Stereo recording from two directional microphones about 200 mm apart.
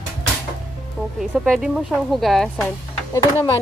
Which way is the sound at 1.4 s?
Centre (ahead or behind).